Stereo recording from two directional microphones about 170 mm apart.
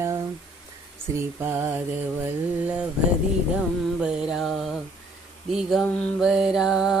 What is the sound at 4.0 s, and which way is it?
Music, centre (ahead or behind).